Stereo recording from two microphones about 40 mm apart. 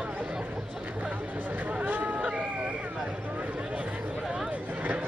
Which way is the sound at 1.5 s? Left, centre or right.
Right.